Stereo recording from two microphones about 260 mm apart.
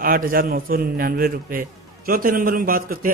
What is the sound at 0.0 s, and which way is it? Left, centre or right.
A man's voice, right.